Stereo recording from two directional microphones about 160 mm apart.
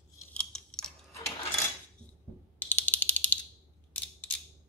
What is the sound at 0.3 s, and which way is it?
Chewing, 5° left (ahead or behind).